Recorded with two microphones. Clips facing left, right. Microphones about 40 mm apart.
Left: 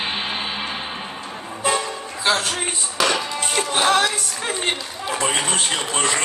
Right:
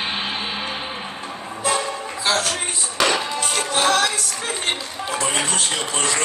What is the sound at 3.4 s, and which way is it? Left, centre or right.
Music, centre.